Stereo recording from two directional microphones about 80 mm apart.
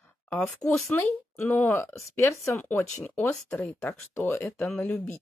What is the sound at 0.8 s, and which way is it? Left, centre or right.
Speech, left.